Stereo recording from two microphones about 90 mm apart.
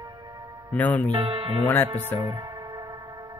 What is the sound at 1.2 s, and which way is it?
Speech, 70° right (ahead or behind).